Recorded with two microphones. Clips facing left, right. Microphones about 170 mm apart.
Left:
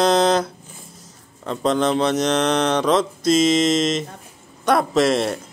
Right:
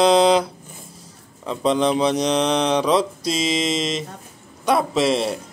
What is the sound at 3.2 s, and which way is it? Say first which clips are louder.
Mantra: left 6 dB; 50° left (ahead or behind).